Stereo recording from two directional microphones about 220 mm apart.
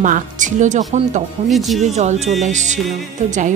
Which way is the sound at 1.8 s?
30° right (ahead or behind).